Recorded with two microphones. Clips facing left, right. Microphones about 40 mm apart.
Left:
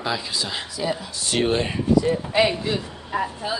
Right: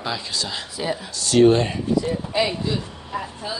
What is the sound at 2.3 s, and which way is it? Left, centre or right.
Speech, left.